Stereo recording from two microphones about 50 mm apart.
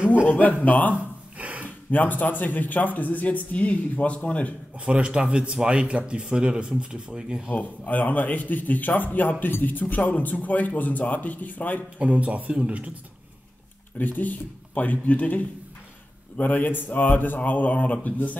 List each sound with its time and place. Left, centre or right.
0.3 s speech: left
1.4 s a sound: right
1.9 s speech: left
4.7 s speech: right
7.4 s speech: left
12.0 s speech: right
13.9 s speech: left